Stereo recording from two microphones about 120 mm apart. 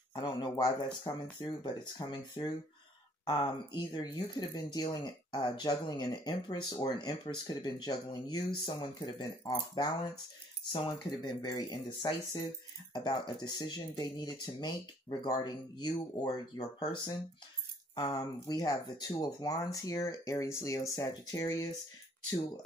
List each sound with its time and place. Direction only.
0.1 s speech: 40° left (ahead or behind)